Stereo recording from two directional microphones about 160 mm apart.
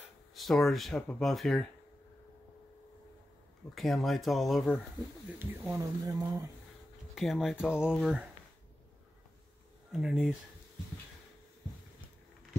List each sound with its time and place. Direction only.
0.3 s speech: centre (ahead or behind)
3.7 s speech: centre (ahead or behind)
5.7 s speech: 20° right (ahead or behind)
7.2 s speech: centre (ahead or behind)
9.9 s speech: centre (ahead or behind)